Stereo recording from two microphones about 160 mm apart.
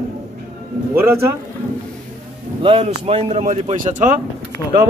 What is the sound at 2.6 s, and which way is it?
Speech, 35° right (ahead or behind).